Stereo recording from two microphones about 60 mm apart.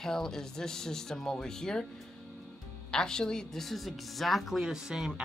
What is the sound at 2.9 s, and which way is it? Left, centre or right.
A woman's voice, centre.